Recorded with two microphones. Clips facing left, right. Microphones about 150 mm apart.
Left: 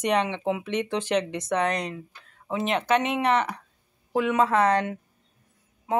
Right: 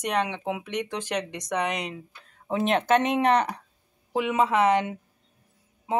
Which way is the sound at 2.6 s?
45° right (ahead or behind).